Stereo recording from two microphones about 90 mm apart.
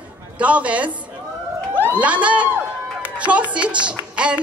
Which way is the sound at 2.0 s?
15° right (ahead or behind).